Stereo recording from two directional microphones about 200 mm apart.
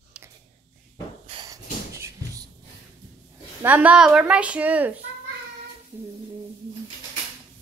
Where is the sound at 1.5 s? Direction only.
15° right (ahead or behind).